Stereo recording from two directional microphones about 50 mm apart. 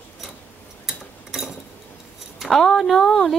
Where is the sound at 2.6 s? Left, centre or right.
Centre.